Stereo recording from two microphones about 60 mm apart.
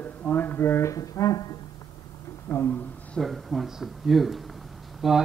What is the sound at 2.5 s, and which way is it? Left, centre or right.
Speech, left.